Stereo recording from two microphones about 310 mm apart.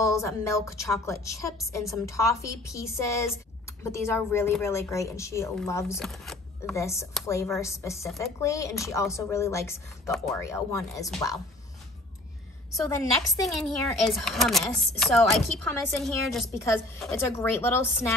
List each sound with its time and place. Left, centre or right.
0.0 s a woman's voice: centre
12.7 s a woman's voice: centre